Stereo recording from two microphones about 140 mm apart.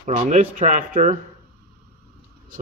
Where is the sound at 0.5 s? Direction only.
70° right (ahead or behind).